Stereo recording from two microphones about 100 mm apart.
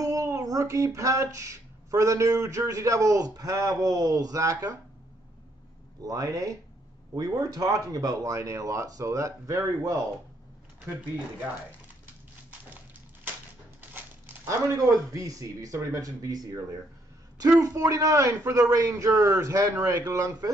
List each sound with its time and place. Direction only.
0.0 s speech: 35° right (ahead or behind)
6.0 s speech: 35° right (ahead or behind)
13.7 s dog: 20° right (ahead or behind)
14.7 s speech: 35° right (ahead or behind)